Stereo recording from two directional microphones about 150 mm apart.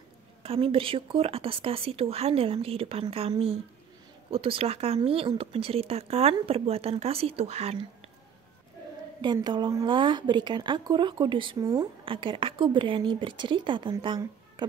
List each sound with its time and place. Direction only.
0.4 s speech: 40° right (ahead or behind)
9.2 s speech: 30° right (ahead or behind)
12.0 s speech: 35° right (ahead or behind)